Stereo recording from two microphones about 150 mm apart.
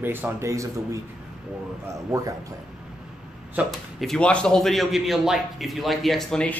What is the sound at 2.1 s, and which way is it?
Speech, 20° right (ahead or behind).